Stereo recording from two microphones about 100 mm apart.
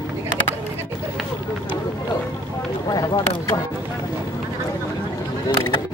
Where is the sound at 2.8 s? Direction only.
40° left (ahead or behind).